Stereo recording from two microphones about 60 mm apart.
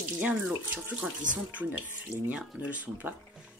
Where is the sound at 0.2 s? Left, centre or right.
Right.